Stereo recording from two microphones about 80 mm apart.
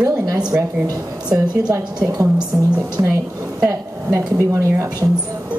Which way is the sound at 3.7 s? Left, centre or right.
Right.